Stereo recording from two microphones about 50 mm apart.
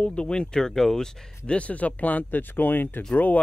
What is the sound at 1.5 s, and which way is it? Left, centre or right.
Speech, left.